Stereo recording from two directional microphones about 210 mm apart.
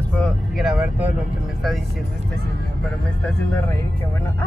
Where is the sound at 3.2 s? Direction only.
10° left (ahead or behind).